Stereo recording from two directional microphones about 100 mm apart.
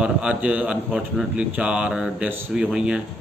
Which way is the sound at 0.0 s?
15° right (ahead or behind).